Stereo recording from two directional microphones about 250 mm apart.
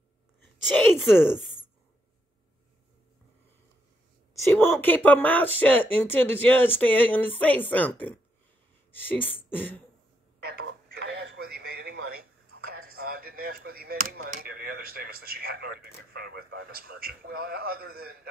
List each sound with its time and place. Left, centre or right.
0.7 s speech: centre
4.4 s speech: centre
10.4 s a sound: right
14.4 s speech: right